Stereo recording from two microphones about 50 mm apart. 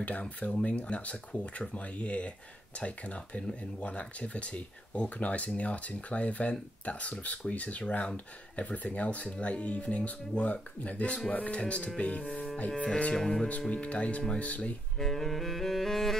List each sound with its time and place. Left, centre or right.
0.2 s speech: left
13.1 s speech: centre
13.5 s speech: left
15.0 s saxophone: centre